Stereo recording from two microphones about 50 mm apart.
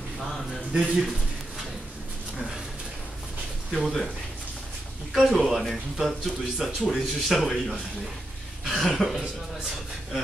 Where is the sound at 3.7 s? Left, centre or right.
Centre.